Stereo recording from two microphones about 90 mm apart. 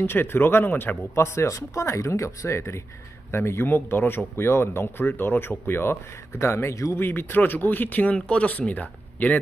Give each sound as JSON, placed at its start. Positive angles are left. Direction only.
{"t": 0.0, "sound": "speech", "side_deg": 25}
{"t": 7.0, "sound": "speech", "side_deg": 25}